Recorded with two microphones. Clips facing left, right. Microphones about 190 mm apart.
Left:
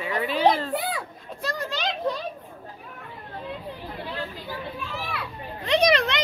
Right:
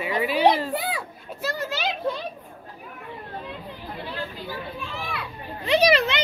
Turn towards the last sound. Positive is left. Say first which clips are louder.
# right 1 dB
turn(degrees=-5)  # may be behind; listen again after turning